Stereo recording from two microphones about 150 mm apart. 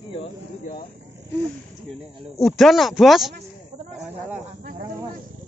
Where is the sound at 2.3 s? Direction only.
Centre (ahead or behind).